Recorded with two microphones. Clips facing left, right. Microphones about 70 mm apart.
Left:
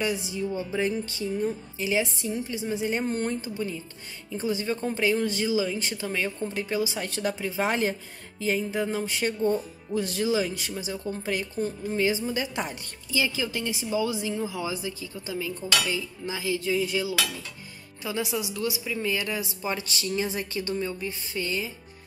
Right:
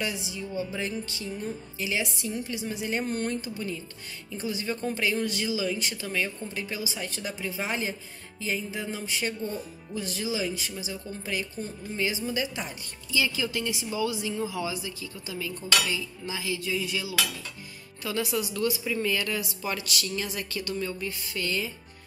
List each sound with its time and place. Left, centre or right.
0.1 s speech: left
0.7 s cutlery: left
4.4 s speech: left
6.6 s speech: left
13.1 s cutlery: left
18.0 s speech: centre
18.5 s speech: centre
19.4 s cutlery: left